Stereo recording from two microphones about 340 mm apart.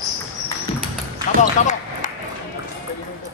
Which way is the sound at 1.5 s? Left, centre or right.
Left.